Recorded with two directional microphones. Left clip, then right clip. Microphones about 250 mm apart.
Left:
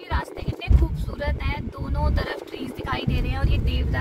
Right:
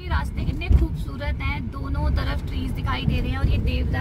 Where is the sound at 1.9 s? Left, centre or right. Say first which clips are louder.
Left 3 dB; centre.